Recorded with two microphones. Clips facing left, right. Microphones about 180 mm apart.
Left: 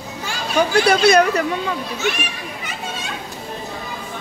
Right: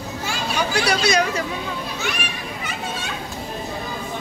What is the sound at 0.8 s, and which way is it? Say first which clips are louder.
Speech: left 7 dB; 55° left (ahead or behind).